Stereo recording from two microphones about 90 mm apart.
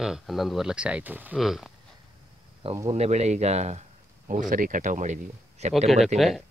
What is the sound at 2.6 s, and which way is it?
Speech, 90° right.